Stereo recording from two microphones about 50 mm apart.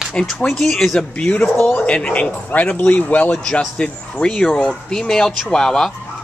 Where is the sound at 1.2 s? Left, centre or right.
Left.